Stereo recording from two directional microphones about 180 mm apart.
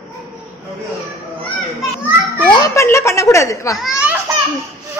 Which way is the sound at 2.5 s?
20° left (ahead or behind).